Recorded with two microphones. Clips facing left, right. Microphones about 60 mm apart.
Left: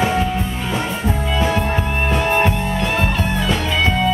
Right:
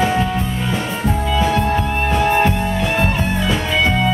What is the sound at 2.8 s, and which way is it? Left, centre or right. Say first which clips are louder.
Music: right 1 dB; centre.